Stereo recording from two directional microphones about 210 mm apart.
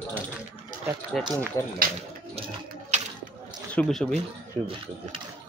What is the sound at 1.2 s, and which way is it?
Speech, 5° left (ahead or behind).